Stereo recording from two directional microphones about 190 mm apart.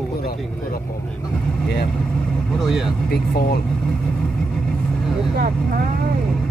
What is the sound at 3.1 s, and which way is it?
Speech, 55° left (ahead or behind).